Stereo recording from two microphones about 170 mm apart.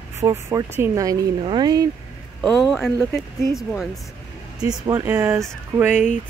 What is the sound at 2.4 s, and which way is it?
Speech, centre (ahead or behind).